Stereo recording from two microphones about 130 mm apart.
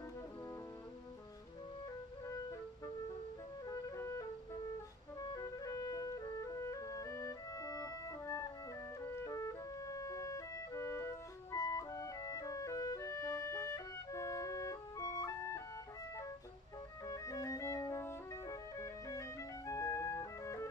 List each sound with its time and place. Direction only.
2.2 s music: 25° left (ahead or behind)
5.2 s music: 30° left (ahead or behind)
17.0 s music: 25° left (ahead or behind)